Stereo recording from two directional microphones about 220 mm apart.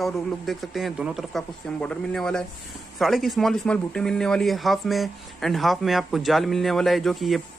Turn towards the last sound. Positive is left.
turn(degrees=0)  # may be behind; listen again after turning